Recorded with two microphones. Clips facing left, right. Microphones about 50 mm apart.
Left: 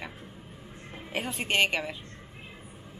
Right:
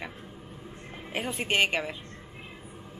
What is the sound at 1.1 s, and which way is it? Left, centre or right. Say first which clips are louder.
Speech: even; centre.